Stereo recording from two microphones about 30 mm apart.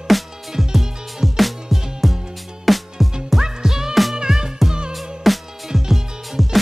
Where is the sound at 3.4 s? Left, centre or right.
Centre.